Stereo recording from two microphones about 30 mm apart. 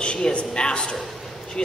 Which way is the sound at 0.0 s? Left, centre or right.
Left.